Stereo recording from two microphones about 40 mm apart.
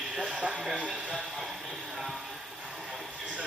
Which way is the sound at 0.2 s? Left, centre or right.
Right.